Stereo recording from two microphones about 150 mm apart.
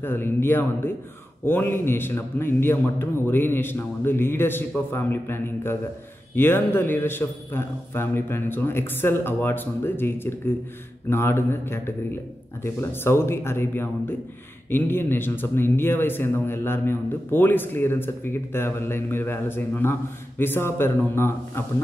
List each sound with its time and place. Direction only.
0.0 s speech: 15° left (ahead or behind)